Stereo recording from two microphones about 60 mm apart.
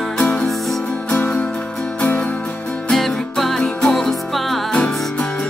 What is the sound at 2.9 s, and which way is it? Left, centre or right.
Music, centre.